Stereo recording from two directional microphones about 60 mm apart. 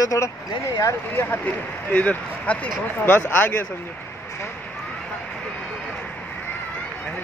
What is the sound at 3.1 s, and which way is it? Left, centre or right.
Speech, left.